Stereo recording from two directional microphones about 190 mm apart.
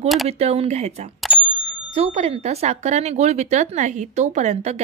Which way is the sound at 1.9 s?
35° right (ahead or behind).